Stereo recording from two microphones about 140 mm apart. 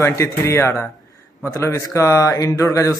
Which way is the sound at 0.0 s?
20° left (ahead or behind).